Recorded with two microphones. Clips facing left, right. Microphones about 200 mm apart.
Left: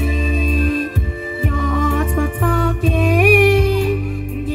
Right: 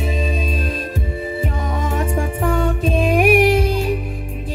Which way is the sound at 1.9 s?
45° right (ahead or behind).